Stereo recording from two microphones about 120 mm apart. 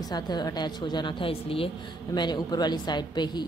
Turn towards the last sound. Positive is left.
turn(degrees=40)  # may be behind; listen again after turning